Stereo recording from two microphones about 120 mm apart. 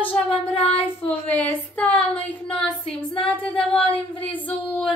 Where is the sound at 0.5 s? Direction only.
55° left (ahead or behind).